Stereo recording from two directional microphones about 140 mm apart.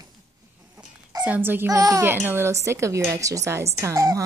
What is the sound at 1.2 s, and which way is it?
A child's voice, 15° right (ahead or behind).